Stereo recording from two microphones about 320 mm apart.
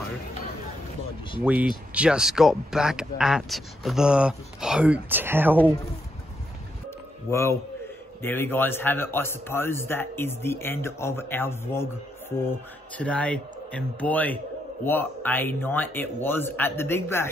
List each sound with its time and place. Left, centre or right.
1.4 s speech: centre
7.2 s a man's voice: centre